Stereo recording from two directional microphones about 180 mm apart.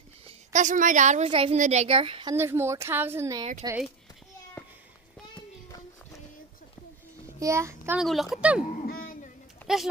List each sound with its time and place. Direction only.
0.5 s a woman's voice: 45° right (ahead or behind)
2.3 s speech: 15° right (ahead or behind)
7.3 s a child's voice: 15° right (ahead or behind)
8.0 s speech: centre (ahead or behind)
8.6 s a sound: 50° left (ahead or behind)
9.7 s speech: centre (ahead or behind)